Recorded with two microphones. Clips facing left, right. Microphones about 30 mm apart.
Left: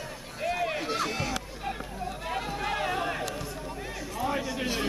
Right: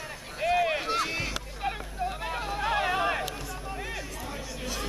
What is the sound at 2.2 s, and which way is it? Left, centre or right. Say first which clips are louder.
Chatter: left 1 dB; centre.